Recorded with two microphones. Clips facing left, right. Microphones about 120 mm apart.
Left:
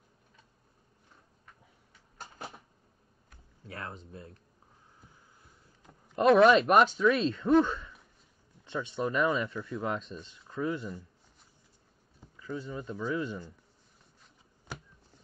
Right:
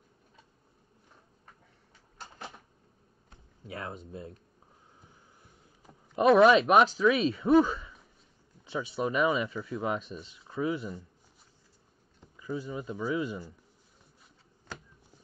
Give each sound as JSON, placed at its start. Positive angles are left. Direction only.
{"t": 2.1, "sound": "cupboard open or close", "side_deg": 40}
{"t": 3.6, "sound": "speech", "side_deg": -15}
{"t": 6.1, "sound": "speech", "side_deg": -5}
{"t": 12.4, "sound": "speech", "side_deg": -10}